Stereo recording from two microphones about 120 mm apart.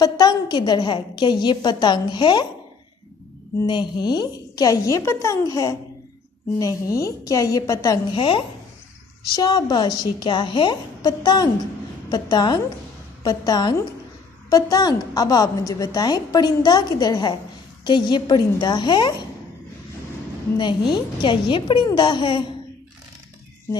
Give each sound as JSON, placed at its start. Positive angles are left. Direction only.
{"t": 0.0, "sound": "a woman's voice", "side_deg": 35}
{"t": 3.6, "sound": "speech", "side_deg": 40}
{"t": 8.1, "sound": "a woman's voice", "side_deg": 45}
{"t": 9.3, "sound": "a woman's voice", "side_deg": 35}
{"t": 20.5, "sound": "a woman's voice", "side_deg": 40}